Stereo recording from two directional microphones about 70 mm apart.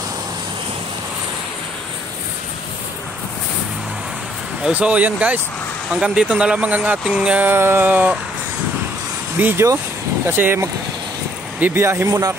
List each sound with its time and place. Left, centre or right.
4.7 s speech: centre
7.4 s speech: right
9.4 s speech: right